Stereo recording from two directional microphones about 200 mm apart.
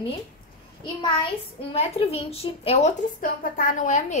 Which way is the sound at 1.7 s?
30° left (ahead or behind).